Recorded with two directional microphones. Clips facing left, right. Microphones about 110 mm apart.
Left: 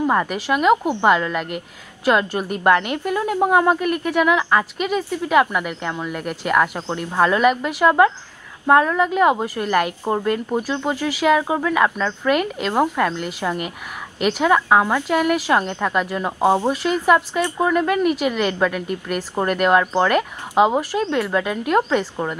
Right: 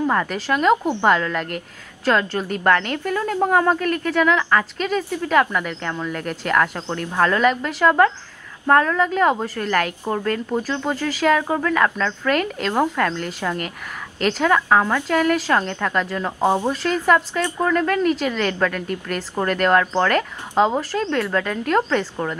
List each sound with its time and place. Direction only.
0.0 s a woman's voice: 15° left (ahead or behind)